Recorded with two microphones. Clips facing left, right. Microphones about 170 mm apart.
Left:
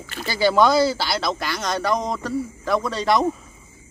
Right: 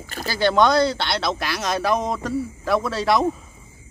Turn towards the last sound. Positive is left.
turn(degrees=0)  # may be behind; listen again after turning